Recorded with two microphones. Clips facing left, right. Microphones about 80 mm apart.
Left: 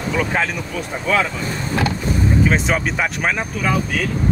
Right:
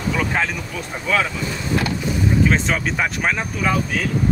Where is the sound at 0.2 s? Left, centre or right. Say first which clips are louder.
Left 1 dB; centre.